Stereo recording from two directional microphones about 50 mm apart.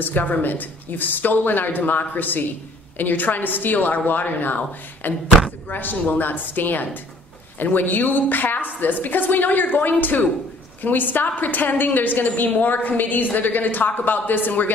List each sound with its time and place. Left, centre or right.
0.0 s a woman's voice: left